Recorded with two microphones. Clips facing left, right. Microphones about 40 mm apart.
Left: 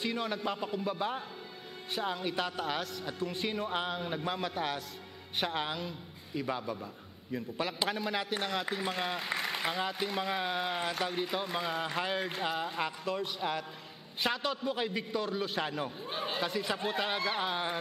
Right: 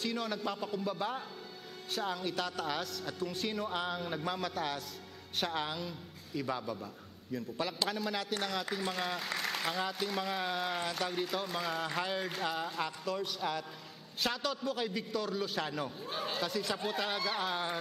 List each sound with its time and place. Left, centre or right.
0.0 s a man's voice: centre